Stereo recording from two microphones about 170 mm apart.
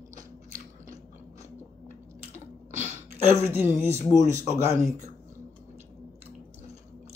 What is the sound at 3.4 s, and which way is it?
Speech, 15° right (ahead or behind).